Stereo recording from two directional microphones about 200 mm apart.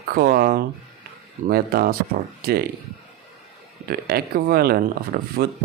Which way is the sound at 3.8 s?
50° right (ahead or behind).